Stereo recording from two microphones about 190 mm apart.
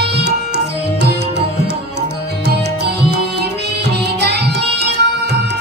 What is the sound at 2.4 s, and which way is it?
Music, 60° right (ahead or behind).